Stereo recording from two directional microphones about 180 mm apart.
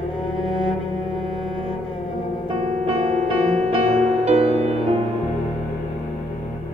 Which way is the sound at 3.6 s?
35° right (ahead or behind).